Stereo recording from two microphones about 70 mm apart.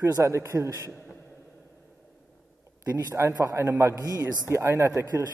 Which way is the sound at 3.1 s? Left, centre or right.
Right.